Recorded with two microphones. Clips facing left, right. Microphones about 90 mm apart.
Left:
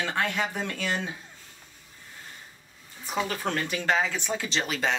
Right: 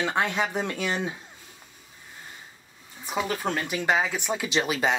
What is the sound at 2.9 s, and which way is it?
Speech, 10° right (ahead or behind).